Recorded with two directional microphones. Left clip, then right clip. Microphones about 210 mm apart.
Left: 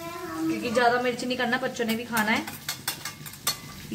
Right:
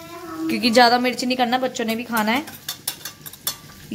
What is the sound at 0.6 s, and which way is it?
A woman's voice, 50° right (ahead or behind).